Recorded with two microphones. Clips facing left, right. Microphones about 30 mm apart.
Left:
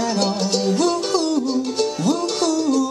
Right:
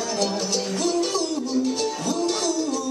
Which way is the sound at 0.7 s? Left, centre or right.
Left.